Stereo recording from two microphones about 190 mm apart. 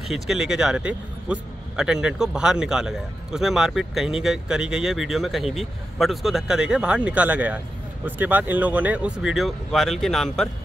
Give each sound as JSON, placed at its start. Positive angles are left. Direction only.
{"t": 0.1, "sound": "speech", "side_deg": -5}